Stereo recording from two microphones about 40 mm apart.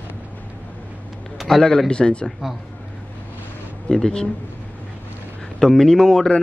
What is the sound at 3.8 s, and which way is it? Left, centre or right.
Speech, centre.